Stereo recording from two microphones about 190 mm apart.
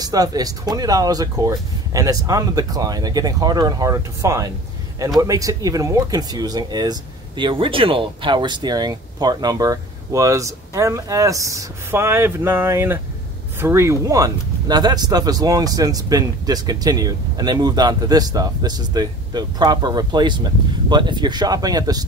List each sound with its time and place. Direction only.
0.0 s speech: 20° right (ahead or behind)